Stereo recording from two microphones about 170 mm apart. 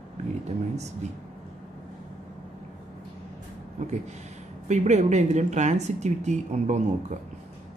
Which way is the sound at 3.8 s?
45° right (ahead or behind).